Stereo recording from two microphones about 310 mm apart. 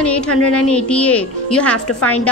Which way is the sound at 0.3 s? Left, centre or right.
Left.